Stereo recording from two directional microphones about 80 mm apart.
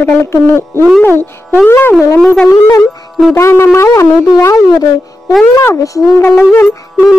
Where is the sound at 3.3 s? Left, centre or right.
Left.